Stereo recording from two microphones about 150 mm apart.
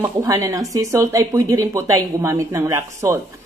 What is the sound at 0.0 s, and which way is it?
A woman's voice, 20° right (ahead or behind).